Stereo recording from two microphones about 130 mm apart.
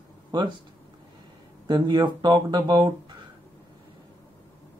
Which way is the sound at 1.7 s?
35° right (ahead or behind).